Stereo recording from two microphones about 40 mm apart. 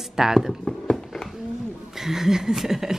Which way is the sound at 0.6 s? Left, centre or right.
Centre.